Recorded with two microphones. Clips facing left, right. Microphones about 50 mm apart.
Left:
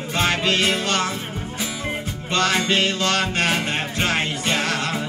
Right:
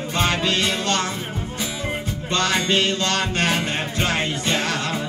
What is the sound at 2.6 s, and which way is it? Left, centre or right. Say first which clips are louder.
Music: even; centre.